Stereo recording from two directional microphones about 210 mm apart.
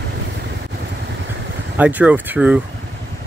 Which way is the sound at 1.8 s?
5° right (ahead or behind).